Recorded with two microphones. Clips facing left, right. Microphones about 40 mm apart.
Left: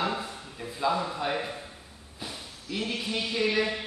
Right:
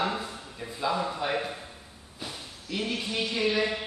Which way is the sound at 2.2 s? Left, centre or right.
Centre.